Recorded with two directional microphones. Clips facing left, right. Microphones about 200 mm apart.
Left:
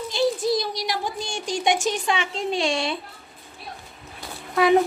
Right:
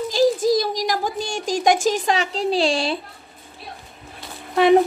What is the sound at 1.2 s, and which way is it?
Speech, 90° right.